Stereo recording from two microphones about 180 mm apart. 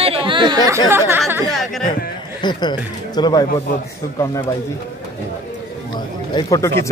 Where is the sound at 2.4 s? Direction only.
25° left (ahead or behind).